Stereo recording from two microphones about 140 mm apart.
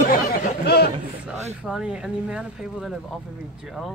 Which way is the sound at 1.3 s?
5° right (ahead or behind).